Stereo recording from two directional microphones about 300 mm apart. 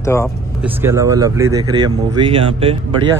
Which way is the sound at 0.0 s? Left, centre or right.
Centre.